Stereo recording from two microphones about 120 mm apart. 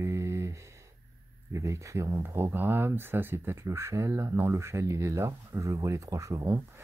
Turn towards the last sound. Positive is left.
turn(degrees=-25)  # may be behind; listen again after turning